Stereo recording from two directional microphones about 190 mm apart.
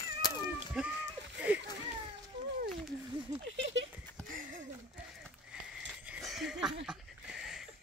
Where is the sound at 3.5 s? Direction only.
75° right (ahead or behind).